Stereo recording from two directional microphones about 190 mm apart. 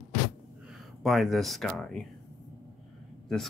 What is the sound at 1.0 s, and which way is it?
Speech, centre (ahead or behind).